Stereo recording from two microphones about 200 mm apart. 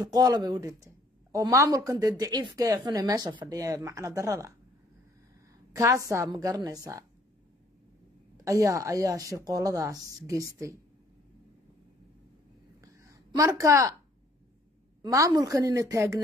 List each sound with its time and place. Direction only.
0.0 s speech: 20° right (ahead or behind)
5.7 s speech: 15° right (ahead or behind)
8.5 s speech: 15° right (ahead or behind)
13.0 s a woman's voice: 15° right (ahead or behind)
15.0 s speech: 15° right (ahead or behind)